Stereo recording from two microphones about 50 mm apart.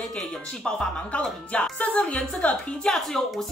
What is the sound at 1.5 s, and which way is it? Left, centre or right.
Speech, left.